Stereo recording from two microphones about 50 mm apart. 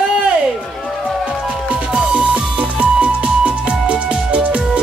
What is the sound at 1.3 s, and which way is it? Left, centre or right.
Music, centre.